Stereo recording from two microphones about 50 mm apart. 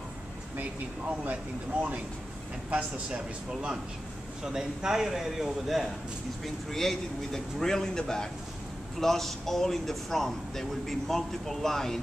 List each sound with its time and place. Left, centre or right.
0.6 s a man's voice: right; by 5.9 s centre
6.4 s a man's voice: centre